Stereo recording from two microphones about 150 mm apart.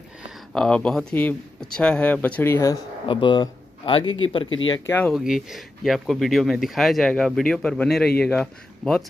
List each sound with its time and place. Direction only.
0.5 s speech: 5° left (ahead or behind); by 2.8 s 20° left (ahead or behind)
3.1 s speech: 30° left (ahead or behind)
4.8 s speech: 10° left (ahead or behind)
5.1 s speech: 5° right (ahead or behind)